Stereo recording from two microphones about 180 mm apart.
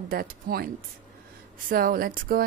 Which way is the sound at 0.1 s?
55° right (ahead or behind).